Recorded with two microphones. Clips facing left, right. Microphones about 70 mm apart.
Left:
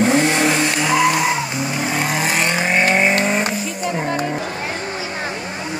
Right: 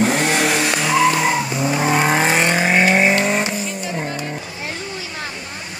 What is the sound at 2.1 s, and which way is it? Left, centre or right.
Vehicle, right.